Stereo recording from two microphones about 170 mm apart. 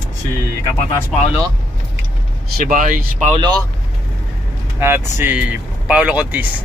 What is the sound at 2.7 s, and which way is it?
Speech, 55° right (ahead or behind).